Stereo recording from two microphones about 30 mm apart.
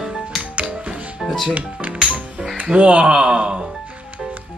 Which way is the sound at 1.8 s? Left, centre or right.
Right.